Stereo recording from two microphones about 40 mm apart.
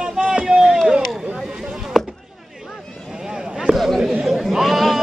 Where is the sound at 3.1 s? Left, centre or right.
Centre.